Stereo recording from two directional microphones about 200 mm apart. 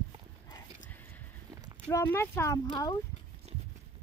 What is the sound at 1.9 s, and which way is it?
Speech, 10° left (ahead or behind).